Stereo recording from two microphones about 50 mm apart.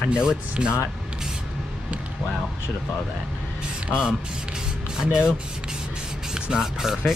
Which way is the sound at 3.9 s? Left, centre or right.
Centre.